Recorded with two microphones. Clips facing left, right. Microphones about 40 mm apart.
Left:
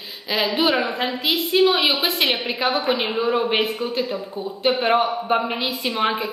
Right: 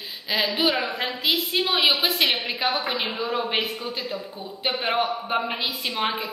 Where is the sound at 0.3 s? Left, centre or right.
Centre.